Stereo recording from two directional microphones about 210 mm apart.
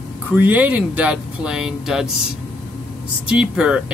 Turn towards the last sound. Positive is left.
turn(degrees=-5)  # may be behind; listen again after turning